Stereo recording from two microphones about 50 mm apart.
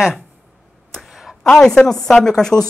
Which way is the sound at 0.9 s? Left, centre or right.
Centre.